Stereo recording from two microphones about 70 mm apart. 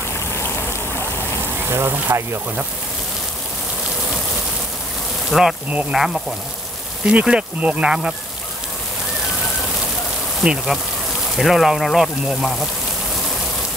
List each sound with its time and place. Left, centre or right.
1.7 s speech: right
5.3 s speech: centre
10.4 s speech: centre